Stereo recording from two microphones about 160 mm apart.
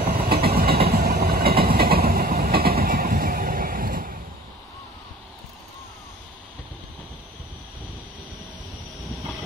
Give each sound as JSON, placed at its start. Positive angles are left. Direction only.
{"t": 0.0, "sound": "train", "side_deg": -70}